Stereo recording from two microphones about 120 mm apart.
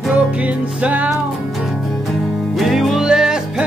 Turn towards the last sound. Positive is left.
turn(degrees=-5)  # may be behind; listen again after turning